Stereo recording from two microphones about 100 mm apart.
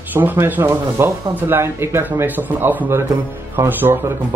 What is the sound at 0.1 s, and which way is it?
Speech, 20° right (ahead or behind).